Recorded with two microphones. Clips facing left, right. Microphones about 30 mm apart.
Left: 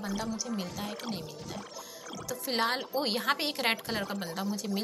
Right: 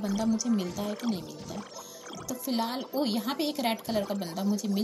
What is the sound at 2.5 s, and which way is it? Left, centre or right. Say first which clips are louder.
Speech: left 1 dB; left.